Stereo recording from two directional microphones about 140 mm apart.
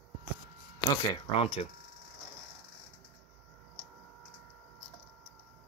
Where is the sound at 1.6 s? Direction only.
50° left (ahead or behind).